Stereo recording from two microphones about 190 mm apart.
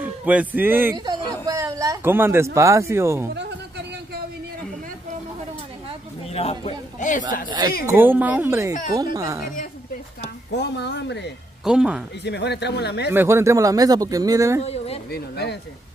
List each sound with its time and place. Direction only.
0.0 s speech: 10° right (ahead or behind)
0.9 s a sound: 20° right (ahead or behind)
3.3 s a sound: 60° right (ahead or behind)
6.2 s a sound: 30° left (ahead or behind)
7.4 s speech: 25° right (ahead or behind)
7.8 s speech: 10° right (ahead or behind)
10.5 s speech: 60° left (ahead or behind)
11.6 s speech: 5° right (ahead or behind)
12.2 s speech: 65° left (ahead or behind)
13.1 s speech: 15° right (ahead or behind)
14.6 s a sound: 35° left (ahead or behind)
15.0 s speech: 55° left (ahead or behind)